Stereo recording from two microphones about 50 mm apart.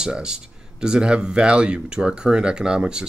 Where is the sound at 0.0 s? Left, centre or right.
Centre.